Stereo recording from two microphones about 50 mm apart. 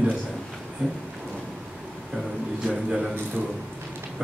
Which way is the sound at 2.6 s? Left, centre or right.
Centre.